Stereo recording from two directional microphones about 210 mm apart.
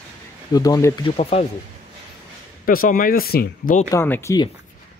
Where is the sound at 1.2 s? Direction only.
30° left (ahead or behind).